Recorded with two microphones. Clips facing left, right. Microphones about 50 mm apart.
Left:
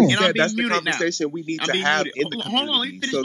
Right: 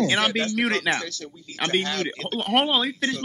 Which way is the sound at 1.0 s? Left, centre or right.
Left.